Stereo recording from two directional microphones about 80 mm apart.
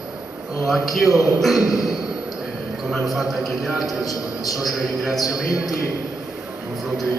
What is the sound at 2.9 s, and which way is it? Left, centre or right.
A man's voice, centre.